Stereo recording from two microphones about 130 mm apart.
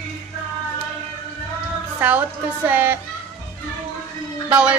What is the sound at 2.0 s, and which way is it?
Speech, 15° right (ahead or behind).